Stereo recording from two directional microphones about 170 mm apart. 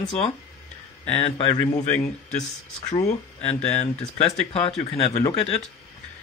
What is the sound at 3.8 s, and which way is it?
Speech, 40° left (ahead or behind).